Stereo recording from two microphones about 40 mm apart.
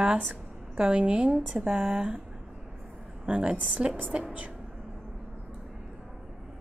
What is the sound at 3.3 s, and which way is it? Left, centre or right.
Speech, right.